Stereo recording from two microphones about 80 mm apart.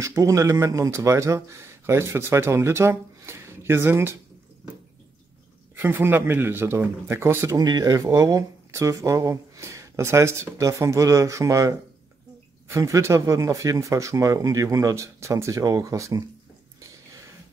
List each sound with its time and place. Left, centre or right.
0.0 s speech: right
5.8 s speech: right
7.5 s speech: right